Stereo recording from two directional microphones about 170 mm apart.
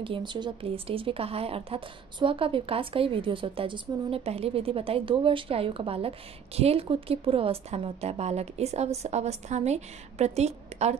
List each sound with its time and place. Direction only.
0.0 s a woman's voice: 30° right (ahead or behind)